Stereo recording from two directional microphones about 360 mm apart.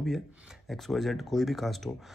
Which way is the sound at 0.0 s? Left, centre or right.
Centre.